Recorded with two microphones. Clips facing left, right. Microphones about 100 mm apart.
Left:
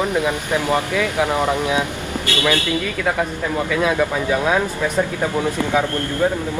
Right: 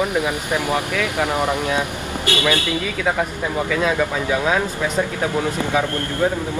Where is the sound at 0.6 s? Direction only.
20° left (ahead or behind).